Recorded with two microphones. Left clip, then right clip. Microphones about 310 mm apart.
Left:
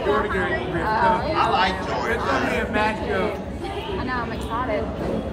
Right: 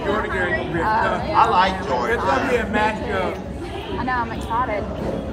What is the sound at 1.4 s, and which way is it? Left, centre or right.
Speech, centre.